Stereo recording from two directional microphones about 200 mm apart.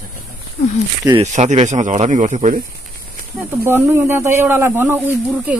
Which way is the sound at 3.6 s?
10° right (ahead or behind).